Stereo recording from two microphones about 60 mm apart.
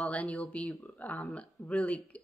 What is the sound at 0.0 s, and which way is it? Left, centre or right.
Speech, left.